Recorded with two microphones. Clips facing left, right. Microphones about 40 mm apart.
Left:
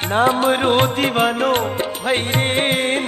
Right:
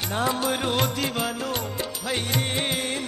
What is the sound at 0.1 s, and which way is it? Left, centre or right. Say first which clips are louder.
Music: left 10 dB; left.